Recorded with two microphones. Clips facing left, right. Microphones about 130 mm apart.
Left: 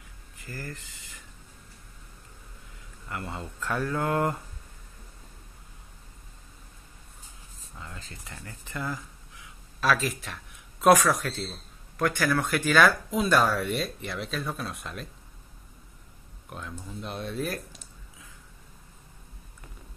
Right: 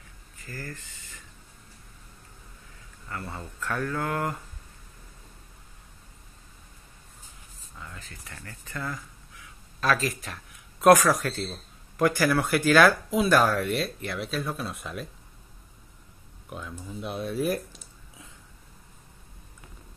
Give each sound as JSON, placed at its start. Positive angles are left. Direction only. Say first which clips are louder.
{"t": 0.5, "sound": "speech", "louder": "even", "side_deg": 10}
{"t": 3.1, "sound": "speech", "louder": "left 1 dB", "side_deg": 15}
{"t": 7.8, "sound": "speech", "louder": "even", "side_deg": 20}
{"t": 9.8, "sound": "speech", "louder": "even", "side_deg": 0}
{"t": 16.4, "sound": "speech", "louder": "right 1 dB", "side_deg": -5}